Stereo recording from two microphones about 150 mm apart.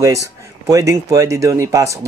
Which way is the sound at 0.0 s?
20° right (ahead or behind).